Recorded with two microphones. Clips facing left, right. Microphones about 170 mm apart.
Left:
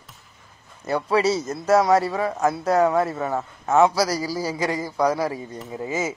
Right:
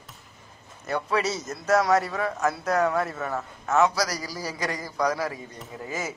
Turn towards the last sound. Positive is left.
turn(degrees=25)  # may be behind; listen again after turning